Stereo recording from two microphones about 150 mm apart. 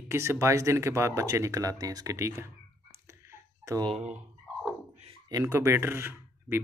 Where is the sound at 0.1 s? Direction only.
20° right (ahead or behind).